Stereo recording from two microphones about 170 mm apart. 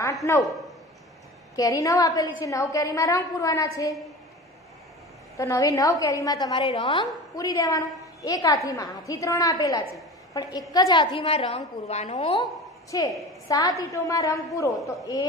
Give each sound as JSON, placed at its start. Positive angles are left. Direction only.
{"t": 0.0, "sound": "a man's voice", "side_deg": 20}
{"t": 1.6, "sound": "a woman's voice", "side_deg": 20}
{"t": 5.4, "sound": "a woman's voice", "side_deg": 20}
{"t": 12.9, "sound": "a woman's voice", "side_deg": 20}